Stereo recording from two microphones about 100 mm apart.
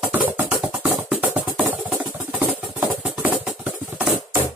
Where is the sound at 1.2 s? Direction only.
20° right (ahead or behind).